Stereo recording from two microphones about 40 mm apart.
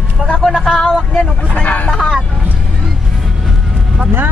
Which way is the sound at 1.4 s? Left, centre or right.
Left.